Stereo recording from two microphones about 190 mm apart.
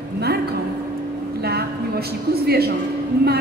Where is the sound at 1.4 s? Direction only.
55° right (ahead or behind).